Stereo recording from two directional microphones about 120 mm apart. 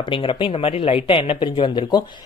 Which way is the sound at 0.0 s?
45° left (ahead or behind).